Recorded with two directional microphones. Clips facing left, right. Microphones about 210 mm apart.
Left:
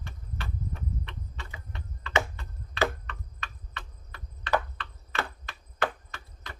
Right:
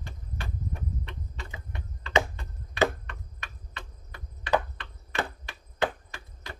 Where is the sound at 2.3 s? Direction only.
20° right (ahead or behind).